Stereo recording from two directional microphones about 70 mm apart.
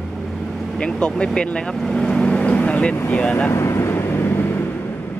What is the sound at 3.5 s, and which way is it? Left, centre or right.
Vehicle, left.